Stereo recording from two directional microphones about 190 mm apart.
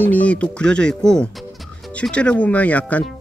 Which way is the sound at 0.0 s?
10° left (ahead or behind).